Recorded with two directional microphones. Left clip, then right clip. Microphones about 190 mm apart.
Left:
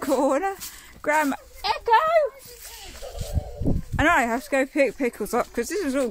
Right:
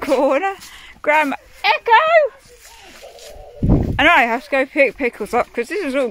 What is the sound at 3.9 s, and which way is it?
Speech, 5° left (ahead or behind).